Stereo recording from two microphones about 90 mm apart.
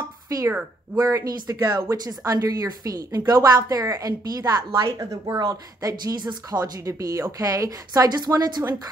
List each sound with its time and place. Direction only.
0.3 s a woman's voice: 40° right (ahead or behind)
6.8 s a woman's voice: 35° right (ahead or behind)